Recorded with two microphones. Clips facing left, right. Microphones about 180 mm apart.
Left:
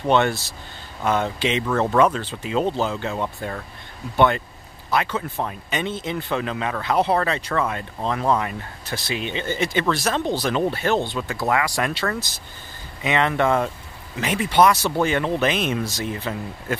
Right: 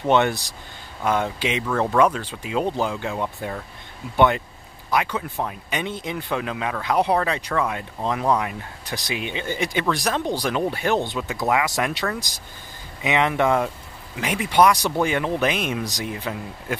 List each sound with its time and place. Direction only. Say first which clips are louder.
0.0 s speech: even; 15° right (ahead or behind)
4.9 s speech: even; 10° right (ahead or behind)